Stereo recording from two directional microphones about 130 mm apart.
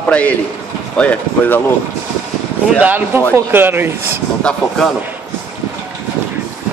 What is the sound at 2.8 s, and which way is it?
A man's voice, 15° right (ahead or behind).